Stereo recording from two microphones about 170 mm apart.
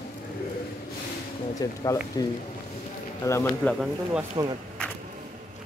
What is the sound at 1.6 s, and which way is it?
Speech, 20° left (ahead or behind).